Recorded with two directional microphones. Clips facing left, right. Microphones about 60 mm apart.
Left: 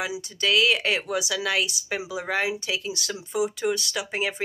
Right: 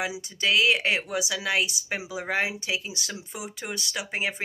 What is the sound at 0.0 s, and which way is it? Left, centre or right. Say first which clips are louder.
Speech: left 1 dB; right.